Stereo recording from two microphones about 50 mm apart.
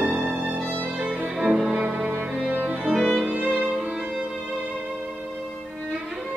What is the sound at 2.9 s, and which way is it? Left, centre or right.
Music, centre.